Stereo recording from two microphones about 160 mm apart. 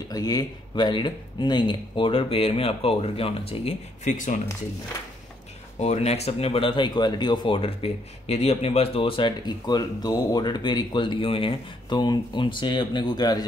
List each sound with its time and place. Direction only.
0.1 s speech: 25° left (ahead or behind)
5.8 s speech: 40° left (ahead or behind); by 13.5 s 25° left (ahead or behind)